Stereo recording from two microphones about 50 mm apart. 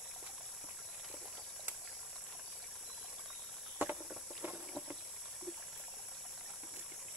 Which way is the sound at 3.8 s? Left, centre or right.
Right.